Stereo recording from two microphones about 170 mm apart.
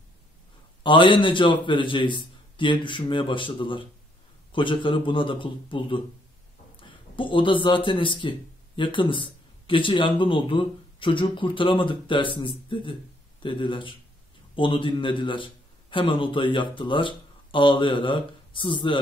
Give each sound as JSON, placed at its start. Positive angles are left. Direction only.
{"t": 0.8, "sound": "a man's voice", "side_deg": 30}